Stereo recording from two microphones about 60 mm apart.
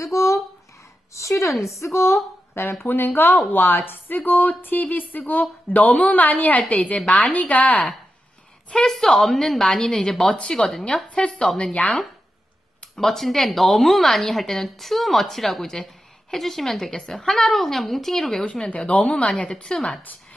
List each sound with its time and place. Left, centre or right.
0.0 s a sound: left
1.6 s a woman's voice: left
8.7 s a woman's voice: centre
12.9 s a woman's voice: centre
18.4 s speech: centre
19.4 s speech: centre